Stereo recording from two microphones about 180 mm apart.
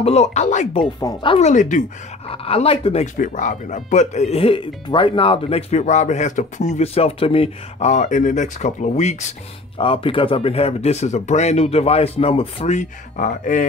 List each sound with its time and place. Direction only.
0.0 s speech: 35° left (ahead or behind)
1.0 s speech: 30° left (ahead or behind)
1.5 s speech: 45° left (ahead or behind)
2.2 s speech: 30° left (ahead or behind)
3.2 s speech: 45° left (ahead or behind)
9.8 s speech: 30° left (ahead or behind)